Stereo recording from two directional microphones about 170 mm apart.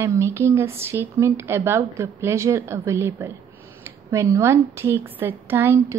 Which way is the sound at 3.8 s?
15° right (ahead or behind).